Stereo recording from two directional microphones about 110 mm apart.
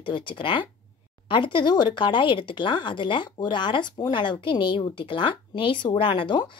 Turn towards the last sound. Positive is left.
turn(degrees=45)  # may be behind; listen again after turning